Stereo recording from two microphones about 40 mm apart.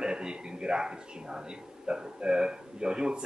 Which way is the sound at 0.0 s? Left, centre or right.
Centre.